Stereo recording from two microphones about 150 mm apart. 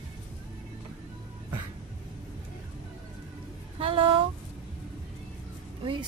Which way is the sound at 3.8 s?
35° right (ahead or behind).